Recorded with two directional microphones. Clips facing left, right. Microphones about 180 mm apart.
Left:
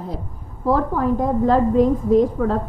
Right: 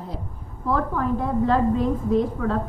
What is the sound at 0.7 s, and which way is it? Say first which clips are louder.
A woman's voice: left 5 dB; 40° left (ahead or behind).